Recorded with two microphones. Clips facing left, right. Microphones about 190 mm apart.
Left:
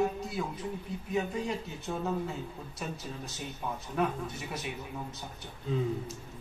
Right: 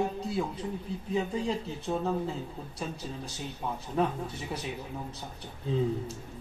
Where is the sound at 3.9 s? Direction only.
30° right (ahead or behind).